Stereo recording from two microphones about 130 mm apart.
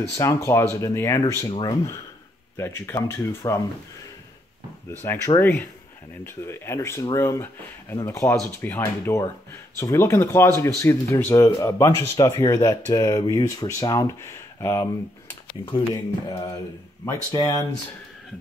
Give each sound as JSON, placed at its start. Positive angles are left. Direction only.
{"t": 0.2, "sound": "speech", "side_deg": 20}
{"t": 2.5, "sound": "speech", "side_deg": 20}
{"t": 5.0, "sound": "speech", "side_deg": 20}
{"t": 15.9, "sound": "speech", "side_deg": 25}